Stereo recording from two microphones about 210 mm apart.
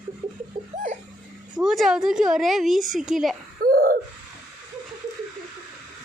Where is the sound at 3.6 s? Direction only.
45° right (ahead or behind).